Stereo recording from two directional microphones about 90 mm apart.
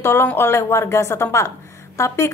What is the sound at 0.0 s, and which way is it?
A woman's voice, 30° left (ahead or behind).